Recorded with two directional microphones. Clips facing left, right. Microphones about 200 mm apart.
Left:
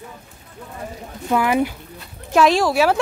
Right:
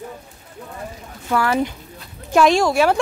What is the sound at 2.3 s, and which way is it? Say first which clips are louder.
Speech: right 1 dB; centre (ahead or behind).